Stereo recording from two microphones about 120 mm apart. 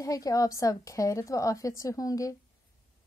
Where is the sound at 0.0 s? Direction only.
30° left (ahead or behind).